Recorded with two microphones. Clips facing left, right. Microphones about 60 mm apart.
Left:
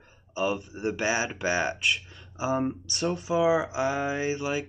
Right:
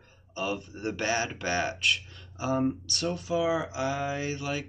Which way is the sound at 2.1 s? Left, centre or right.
Centre.